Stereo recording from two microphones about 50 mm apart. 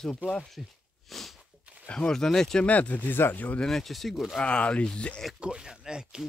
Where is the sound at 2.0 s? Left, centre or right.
Centre.